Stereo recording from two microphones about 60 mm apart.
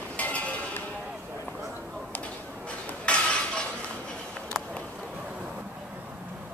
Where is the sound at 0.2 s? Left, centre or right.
Left.